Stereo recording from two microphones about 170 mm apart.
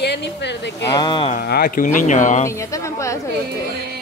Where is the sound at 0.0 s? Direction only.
85° left.